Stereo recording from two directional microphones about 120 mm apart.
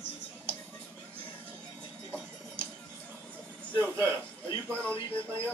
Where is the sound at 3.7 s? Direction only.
20° right (ahead or behind).